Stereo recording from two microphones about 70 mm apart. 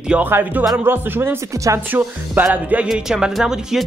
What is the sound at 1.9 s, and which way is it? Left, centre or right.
Music, right.